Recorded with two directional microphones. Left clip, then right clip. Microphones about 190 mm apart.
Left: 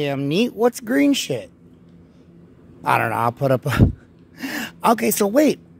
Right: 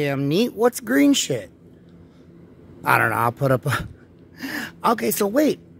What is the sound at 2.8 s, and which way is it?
Speech, 10° left (ahead or behind).